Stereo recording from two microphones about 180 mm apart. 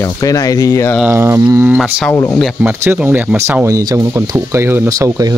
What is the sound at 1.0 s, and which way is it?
Speech, 15° right (ahead or behind).